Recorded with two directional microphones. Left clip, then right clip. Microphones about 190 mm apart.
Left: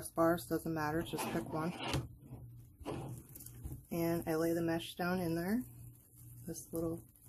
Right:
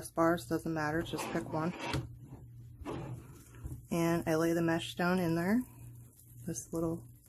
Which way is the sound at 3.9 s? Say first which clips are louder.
Right 4 dB; 20° right (ahead or behind).